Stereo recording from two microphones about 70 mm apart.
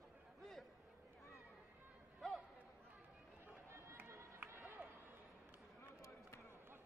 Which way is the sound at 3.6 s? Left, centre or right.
Right.